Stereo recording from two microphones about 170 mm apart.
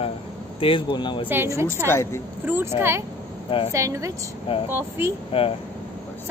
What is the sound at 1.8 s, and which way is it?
Speech, 15° left (ahead or behind).